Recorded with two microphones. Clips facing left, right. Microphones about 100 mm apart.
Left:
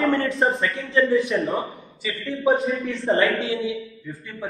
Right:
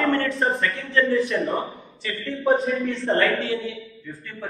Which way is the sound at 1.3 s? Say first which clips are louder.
Left 1 dB; centre (ahead or behind).